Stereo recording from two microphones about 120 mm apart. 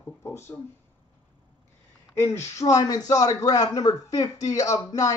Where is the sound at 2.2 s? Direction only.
20° left (ahead or behind).